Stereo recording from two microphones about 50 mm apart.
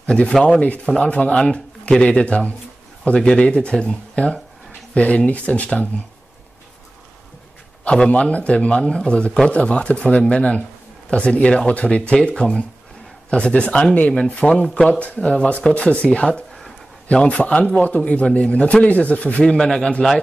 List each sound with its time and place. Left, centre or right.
0.0 s a man's voice: centre
7.8 s speech: left
13.3 s a man's voice: centre
15.4 s speech: left
19.4 s a man's voice: centre